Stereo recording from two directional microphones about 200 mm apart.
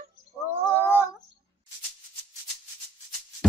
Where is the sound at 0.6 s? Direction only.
10° right (ahead or behind).